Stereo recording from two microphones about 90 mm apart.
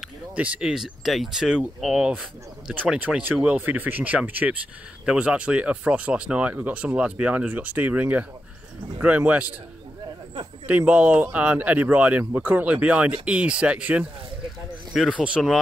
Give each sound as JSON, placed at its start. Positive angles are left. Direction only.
{"t": 0.4, "sound": "speech", "side_deg": -10}
{"t": 10.7, "sound": "speech", "side_deg": -15}